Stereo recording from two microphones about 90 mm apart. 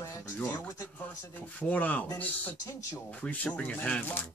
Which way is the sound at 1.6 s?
15° left (ahead or behind).